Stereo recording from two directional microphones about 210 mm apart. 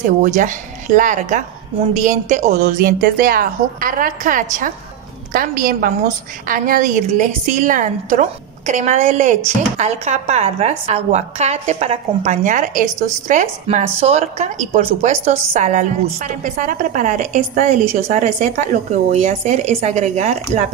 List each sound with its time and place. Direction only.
0.0 s a woman's voice: 35° right (ahead or behind)